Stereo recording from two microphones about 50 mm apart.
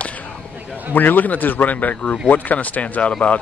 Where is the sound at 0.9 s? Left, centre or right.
Left.